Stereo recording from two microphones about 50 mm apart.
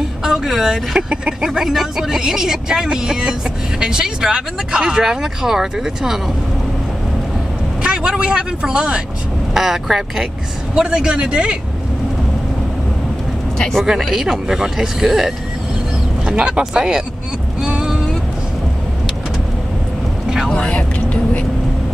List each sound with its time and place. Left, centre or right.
0.2 s speech: centre
7.8 s speech: centre
9.5 s speech: centre
10.7 s speech: centre
13.6 s speech: centre
13.8 s speech: centre
17.6 s a sound: centre
20.4 s vehicle: left